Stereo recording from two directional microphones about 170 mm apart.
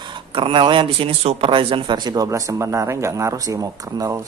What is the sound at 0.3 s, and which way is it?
Speech, 30° right (ahead or behind).